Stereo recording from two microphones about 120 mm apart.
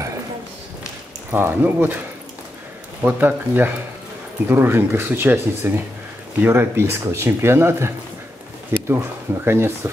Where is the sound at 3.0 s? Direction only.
15° right (ahead or behind).